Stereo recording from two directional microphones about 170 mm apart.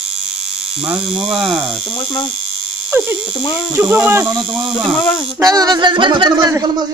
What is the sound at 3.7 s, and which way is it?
Speech, 10° right (ahead or behind).